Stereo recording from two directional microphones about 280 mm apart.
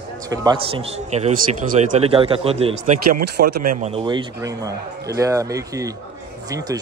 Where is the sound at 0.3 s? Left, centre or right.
Centre.